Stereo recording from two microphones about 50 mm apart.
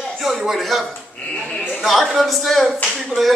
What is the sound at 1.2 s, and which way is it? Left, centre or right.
Speech, left.